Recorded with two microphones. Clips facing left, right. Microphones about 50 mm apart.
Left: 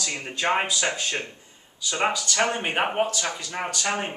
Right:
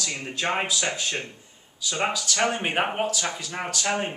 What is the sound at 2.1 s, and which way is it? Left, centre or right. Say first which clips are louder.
Speech: left 1 dB; centre.